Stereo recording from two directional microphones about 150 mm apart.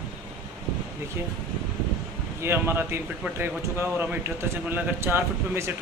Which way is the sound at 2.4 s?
15° right (ahead or behind).